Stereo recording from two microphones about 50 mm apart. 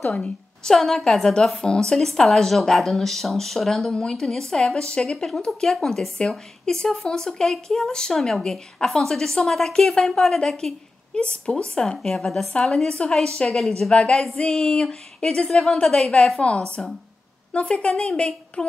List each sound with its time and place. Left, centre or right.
0.0 s a woman's voice: left
0.7 s a woman's voice: centre
16.3 s a woman's voice: left